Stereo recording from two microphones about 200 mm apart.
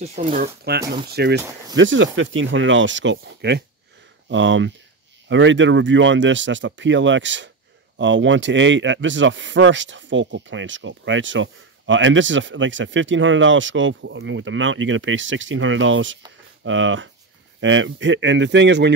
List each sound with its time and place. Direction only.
0.0 s speech: 35° right (ahead or behind)
1.1 s speech: 55° right (ahead or behind)
1.4 s speech: 15° right (ahead or behind)
1.8 s speech: 70° right (ahead or behind)